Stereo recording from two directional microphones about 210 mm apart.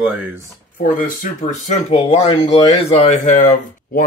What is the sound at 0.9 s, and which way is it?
Speech, 40° left (ahead or behind).